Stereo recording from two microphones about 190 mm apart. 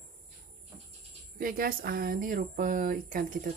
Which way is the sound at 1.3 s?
50° right (ahead or behind).